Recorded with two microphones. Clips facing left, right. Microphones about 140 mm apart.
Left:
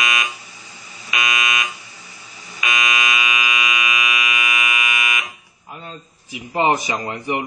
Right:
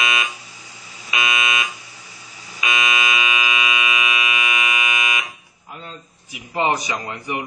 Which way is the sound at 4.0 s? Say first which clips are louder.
Even; 30° right (ahead or behind).